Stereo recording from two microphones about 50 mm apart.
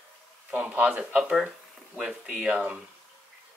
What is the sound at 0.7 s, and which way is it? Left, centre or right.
Speech, centre.